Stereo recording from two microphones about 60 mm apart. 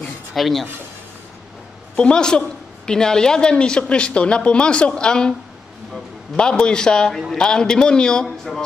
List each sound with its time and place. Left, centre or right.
0.0 s a sound: centre
2.0 s speech: centre
6.3 s speech: centre